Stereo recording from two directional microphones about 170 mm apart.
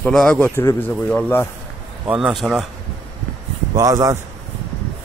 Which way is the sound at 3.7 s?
20° right (ahead or behind).